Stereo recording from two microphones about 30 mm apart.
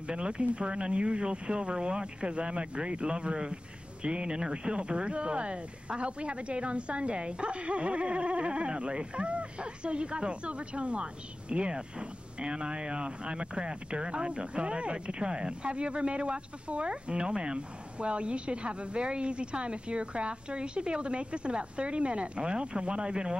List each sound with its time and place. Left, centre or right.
0.1 s speech: right